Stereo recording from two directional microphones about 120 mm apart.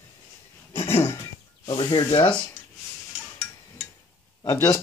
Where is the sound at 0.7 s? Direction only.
55° left (ahead or behind).